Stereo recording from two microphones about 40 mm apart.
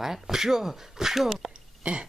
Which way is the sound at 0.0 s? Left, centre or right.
Centre.